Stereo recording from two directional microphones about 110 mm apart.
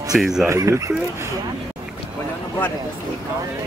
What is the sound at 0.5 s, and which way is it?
Speech, 30° right (ahead or behind).